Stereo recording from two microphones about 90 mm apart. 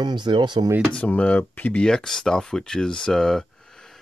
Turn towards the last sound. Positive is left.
turn(degrees=5)  # may be behind; listen again after turning